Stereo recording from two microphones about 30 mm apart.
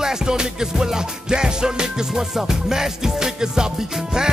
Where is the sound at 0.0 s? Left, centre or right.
Right.